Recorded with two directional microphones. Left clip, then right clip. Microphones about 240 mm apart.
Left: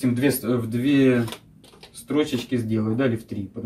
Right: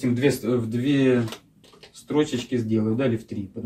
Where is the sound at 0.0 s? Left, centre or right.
Centre.